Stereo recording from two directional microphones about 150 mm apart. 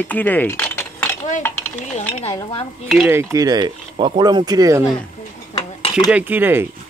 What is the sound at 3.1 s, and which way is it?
Speech, 20° right (ahead or behind).